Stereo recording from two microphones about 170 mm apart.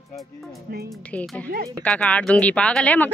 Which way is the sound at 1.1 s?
10° left (ahead or behind).